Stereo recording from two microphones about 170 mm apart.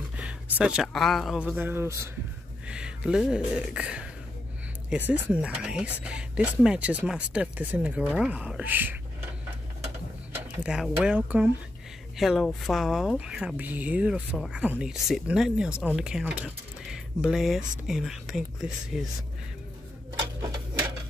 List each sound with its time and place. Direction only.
0.2 s speech: 5° right (ahead or behind)
10.3 s a sound: 5° right (ahead or behind)
11.1 s speech: 10° right (ahead or behind)
20.2 s clock: 25° right (ahead or behind)